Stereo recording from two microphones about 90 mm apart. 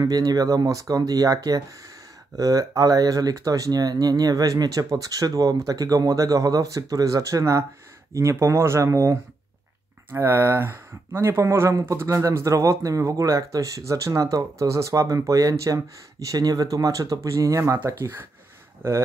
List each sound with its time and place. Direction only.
0.0 s speech: 45° right (ahead or behind); by 19.0 s 25° right (ahead or behind)